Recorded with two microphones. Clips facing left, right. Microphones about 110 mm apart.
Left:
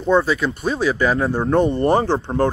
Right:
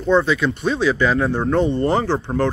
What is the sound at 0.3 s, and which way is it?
Speech, 40° left (ahead or behind).